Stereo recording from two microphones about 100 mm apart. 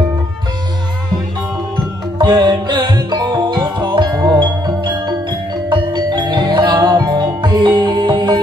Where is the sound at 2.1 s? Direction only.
45° right (ahead or behind).